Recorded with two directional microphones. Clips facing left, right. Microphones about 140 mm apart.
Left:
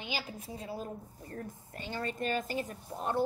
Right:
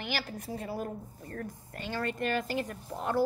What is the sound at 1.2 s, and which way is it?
Speech, 20° left (ahead or behind).